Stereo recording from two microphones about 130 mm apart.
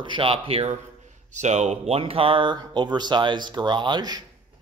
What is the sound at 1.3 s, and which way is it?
Speech, 65° right (ahead or behind).